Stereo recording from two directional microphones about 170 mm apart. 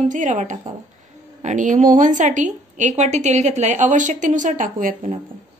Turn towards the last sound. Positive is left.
turn(degrees=-50)  # may be behind; listen again after turning